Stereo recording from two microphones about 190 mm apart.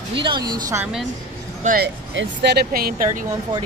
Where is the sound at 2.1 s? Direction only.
60° right (ahead or behind).